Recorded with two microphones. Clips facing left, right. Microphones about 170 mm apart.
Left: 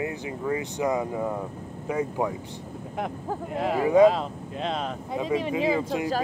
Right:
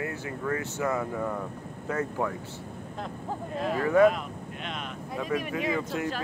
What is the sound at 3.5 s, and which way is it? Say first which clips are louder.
Speech: left 3 dB; 15° left (ahead or behind).